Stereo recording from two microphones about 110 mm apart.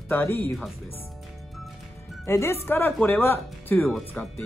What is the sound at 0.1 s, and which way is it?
Speech, 20° left (ahead or behind).